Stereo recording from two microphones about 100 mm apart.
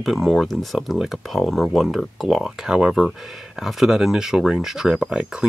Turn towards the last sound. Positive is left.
turn(degrees=-10)  # may be behind; listen again after turning